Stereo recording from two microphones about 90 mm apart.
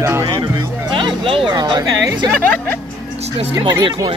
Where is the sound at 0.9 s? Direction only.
70° right (ahead or behind).